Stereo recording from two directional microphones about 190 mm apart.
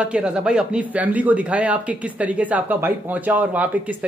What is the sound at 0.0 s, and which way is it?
Speech, 5° right (ahead or behind).